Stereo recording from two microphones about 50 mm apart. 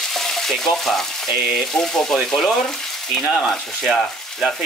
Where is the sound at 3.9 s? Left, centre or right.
Centre.